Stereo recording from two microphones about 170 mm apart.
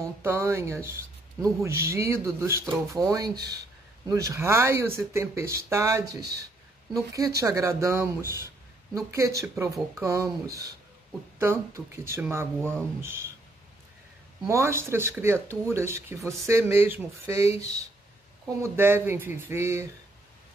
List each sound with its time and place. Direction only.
0.0 s speech: 15° right (ahead or behind)
14.5 s speech: 15° right (ahead or behind)